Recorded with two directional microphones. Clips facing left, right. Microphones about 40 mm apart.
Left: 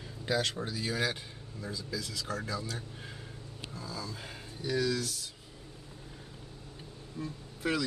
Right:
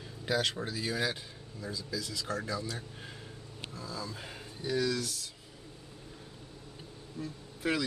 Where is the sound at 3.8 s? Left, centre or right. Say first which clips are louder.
Even; centre.